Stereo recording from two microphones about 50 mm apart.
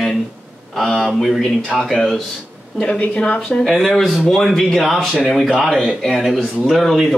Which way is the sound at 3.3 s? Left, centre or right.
Centre.